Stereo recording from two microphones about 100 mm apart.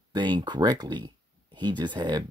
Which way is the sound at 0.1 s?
50° right (ahead or behind).